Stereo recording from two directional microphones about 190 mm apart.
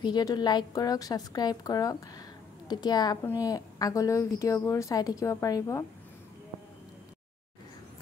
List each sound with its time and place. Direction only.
0.0 s a woman's voice: 20° left (ahead or behind)